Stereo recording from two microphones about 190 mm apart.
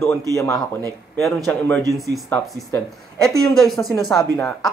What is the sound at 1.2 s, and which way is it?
Speech, 5° left (ahead or behind).